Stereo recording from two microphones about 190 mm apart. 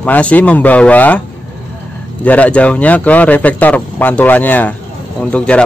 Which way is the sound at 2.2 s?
10° left (ahead or behind).